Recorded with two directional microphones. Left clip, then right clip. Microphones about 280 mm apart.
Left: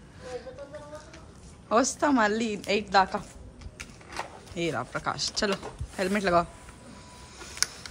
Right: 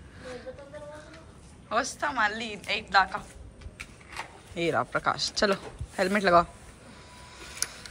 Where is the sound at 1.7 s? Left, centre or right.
Centre.